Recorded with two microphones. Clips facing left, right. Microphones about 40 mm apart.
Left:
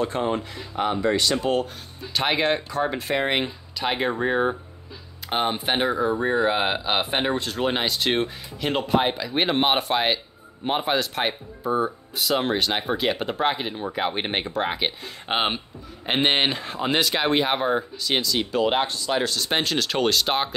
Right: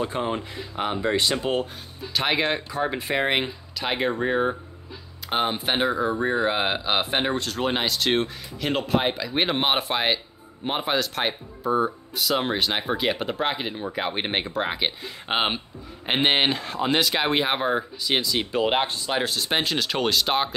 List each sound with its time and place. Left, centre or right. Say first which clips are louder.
0.0 s speech: left 2 dB; centre
2.1 s speech: left 1 dB; centre
19.5 s speech: left 1 dB; centre